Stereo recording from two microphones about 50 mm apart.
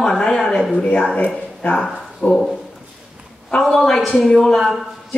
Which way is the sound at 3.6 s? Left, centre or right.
Centre.